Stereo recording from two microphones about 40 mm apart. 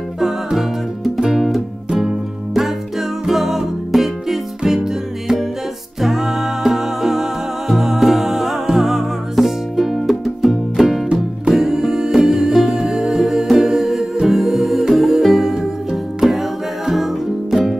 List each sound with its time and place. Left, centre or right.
0.2 s music: centre